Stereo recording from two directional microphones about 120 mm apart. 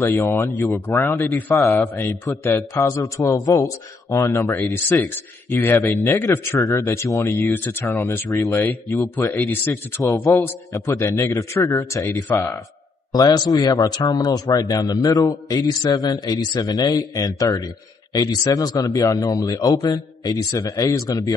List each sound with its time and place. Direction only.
0.0 s a man's voice: 20° left (ahead or behind)
7.3 s a man's voice: 15° left (ahead or behind)
13.1 s a man's voice: 30° left (ahead or behind)